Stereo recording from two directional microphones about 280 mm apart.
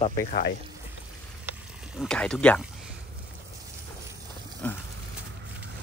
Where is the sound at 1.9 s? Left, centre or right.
Centre.